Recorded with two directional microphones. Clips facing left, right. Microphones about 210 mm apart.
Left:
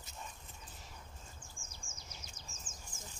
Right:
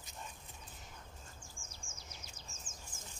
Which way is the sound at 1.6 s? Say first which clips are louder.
Right 1 dB; 90° right.